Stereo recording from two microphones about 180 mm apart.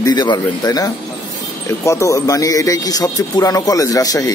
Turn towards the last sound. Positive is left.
turn(degrees=20)  # may be behind; listen again after turning